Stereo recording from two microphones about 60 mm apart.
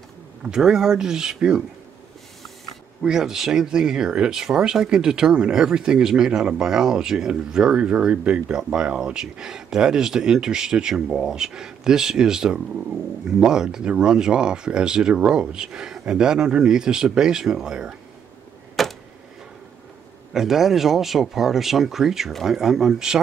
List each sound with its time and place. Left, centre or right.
0.4 s speech: centre
3.0 s speech: centre
18.8 s a sound: centre
20.3 s speech: centre